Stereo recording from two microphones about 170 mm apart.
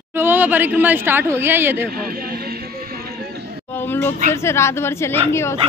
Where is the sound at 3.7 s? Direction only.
15° left (ahead or behind).